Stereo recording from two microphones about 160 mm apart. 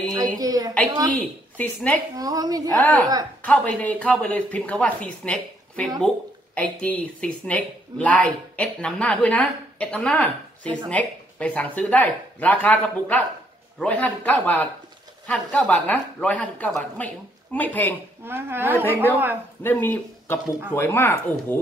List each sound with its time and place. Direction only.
0.4 s a woman's voice: 25° right (ahead or behind)
1.1 s speech: 10° left (ahead or behind)
2.1 s a woman's voice: 20° right (ahead or behind)
2.8 s speech: 10° left (ahead or behind)
18.2 s a woman's voice: 15° right (ahead or behind)
19.6 s speech: 10° left (ahead or behind)